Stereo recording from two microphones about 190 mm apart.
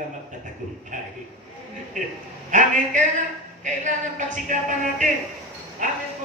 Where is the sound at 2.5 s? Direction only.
40° right (ahead or behind).